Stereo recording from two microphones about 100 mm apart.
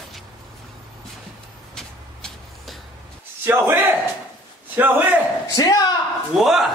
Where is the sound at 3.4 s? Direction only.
20° right (ahead or behind).